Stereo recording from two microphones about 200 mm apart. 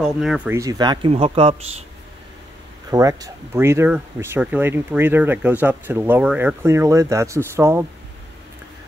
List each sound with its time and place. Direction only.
0.0 s speech: centre (ahead or behind); by 1.9 s 30° right (ahead or behind)
2.9 s speech: 15° right (ahead or behind)